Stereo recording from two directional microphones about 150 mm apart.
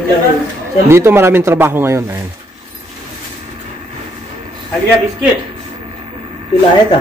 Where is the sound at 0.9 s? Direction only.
15° right (ahead or behind).